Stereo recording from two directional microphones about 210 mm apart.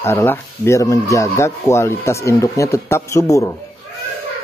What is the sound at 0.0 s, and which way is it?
Speech, 10° left (ahead or behind).